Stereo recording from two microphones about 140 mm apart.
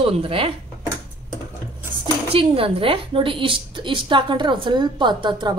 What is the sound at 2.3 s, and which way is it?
A woman's voice, 40° right (ahead or behind).